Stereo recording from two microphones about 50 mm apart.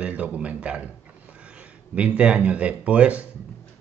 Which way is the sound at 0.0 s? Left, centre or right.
Right.